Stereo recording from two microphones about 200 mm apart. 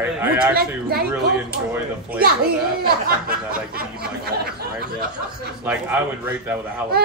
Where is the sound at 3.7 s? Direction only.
50° right (ahead or behind).